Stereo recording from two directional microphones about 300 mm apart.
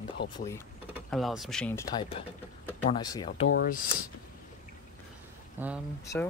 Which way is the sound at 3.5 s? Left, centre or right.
Left.